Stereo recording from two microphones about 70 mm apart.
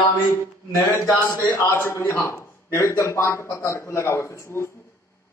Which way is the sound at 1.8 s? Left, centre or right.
Left.